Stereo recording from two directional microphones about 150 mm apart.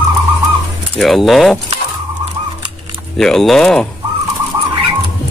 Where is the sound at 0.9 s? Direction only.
Centre (ahead or behind).